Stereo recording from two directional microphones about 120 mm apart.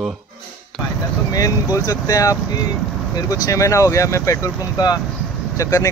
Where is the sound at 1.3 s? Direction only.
30° left (ahead or behind).